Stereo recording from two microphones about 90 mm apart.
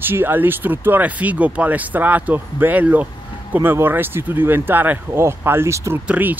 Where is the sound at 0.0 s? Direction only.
25° right (ahead or behind).